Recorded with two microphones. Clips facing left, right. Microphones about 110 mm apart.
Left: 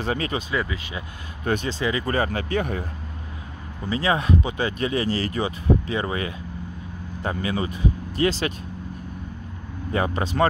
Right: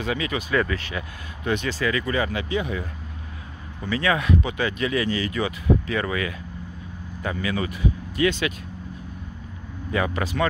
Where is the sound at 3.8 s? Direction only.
30° left (ahead or behind).